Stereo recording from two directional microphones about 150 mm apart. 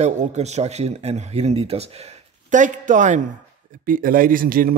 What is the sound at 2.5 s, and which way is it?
Speech, 60° right (ahead or behind).